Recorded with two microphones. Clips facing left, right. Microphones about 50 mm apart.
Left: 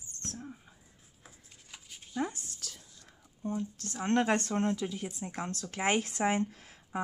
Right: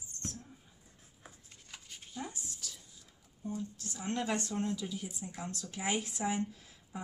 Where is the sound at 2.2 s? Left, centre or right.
Left.